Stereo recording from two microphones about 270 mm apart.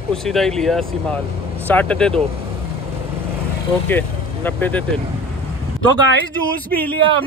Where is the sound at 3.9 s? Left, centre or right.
Centre.